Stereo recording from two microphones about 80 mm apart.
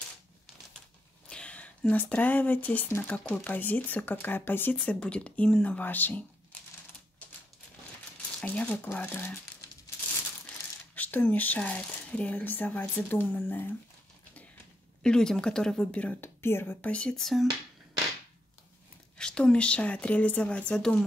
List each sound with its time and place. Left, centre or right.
1.3 s speech: centre
4.8 s speech: centre
8.5 s speech: left
11.0 s speech: left
15.0 s speech: centre
16.2 s speech: left; by 17.5 s centre
19.1 s speech: centre